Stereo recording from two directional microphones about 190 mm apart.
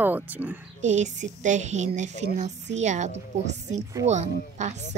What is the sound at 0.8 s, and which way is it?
A woman's voice, 40° right (ahead or behind).